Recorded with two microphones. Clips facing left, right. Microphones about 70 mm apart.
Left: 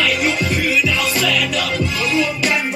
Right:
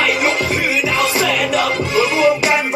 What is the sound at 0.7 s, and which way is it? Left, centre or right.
Music, right.